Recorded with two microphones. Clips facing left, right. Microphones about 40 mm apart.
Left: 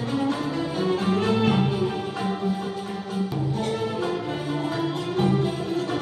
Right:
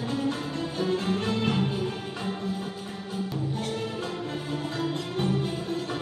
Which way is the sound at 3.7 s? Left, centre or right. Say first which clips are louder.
Left 6 dB; centre.